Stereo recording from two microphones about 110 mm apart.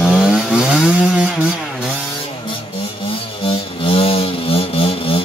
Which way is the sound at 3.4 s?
60° left (ahead or behind).